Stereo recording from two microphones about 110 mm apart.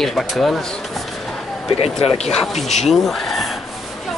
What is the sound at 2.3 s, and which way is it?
Speech, centre (ahead or behind).